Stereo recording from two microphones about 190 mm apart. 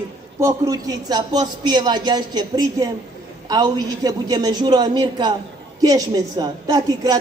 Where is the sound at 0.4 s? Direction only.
15° right (ahead or behind).